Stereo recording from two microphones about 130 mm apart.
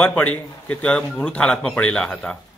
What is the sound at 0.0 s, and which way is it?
Speech, 10° left (ahead or behind).